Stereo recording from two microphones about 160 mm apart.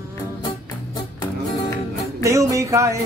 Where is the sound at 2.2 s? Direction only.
20° right (ahead or behind).